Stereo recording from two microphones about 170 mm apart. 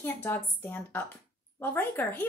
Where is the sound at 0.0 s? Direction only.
10° left (ahead or behind).